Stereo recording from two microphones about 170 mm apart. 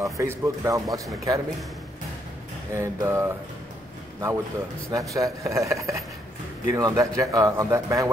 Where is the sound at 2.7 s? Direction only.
15° right (ahead or behind).